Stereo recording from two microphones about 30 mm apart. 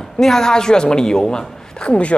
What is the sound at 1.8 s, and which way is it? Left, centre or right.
Speech, left.